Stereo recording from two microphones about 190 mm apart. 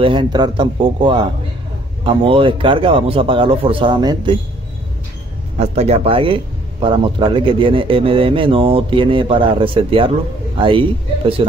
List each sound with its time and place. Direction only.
0.0 s speech: 25° right (ahead or behind)
5.6 s speech: 35° right (ahead or behind)